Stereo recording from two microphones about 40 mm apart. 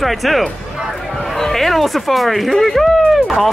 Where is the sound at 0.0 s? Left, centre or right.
Centre.